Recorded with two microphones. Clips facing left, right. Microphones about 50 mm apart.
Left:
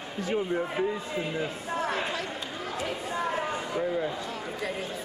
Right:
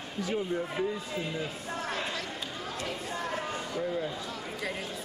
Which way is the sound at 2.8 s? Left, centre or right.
Centre.